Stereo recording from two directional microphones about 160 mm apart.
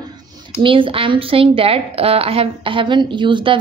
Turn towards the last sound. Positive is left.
turn(degrees=-30)  # may be behind; listen again after turning